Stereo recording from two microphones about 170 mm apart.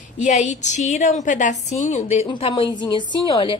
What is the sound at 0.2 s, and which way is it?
A woman's voice, 45° left (ahead or behind).